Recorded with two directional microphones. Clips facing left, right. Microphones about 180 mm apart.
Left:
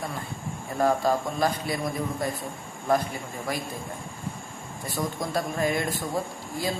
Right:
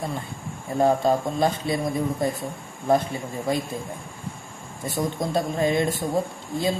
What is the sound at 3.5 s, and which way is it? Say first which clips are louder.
Speech: right 6 dB; 25° right (ahead or behind).